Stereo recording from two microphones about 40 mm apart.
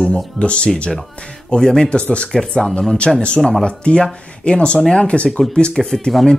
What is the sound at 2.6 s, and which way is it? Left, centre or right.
Speech, centre.